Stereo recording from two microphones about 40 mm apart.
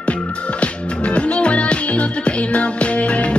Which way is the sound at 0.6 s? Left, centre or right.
Left.